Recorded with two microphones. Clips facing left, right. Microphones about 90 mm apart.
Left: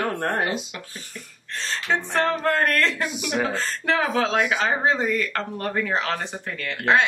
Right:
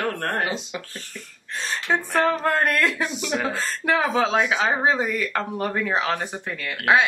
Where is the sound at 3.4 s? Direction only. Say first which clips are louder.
Left 3 dB; 5° right (ahead or behind).